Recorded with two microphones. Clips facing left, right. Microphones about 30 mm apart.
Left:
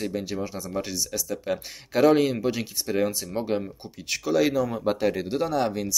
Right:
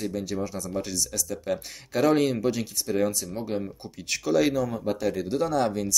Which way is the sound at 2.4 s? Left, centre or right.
Centre.